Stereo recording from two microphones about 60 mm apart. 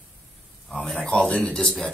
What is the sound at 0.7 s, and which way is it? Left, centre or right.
Speech, centre.